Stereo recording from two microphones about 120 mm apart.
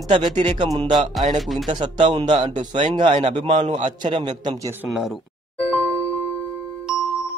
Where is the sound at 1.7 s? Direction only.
40° right (ahead or behind).